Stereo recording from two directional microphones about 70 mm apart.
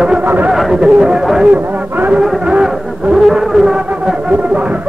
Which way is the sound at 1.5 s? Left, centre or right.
Right.